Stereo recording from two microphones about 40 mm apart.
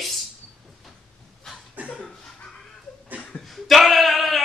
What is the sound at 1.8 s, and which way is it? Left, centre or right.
Cough, right.